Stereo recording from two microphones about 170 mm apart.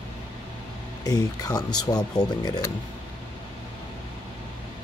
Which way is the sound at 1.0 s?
20° left (ahead or behind).